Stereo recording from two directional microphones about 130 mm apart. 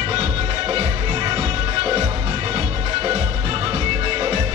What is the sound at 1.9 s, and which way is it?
Music, 30° right (ahead or behind).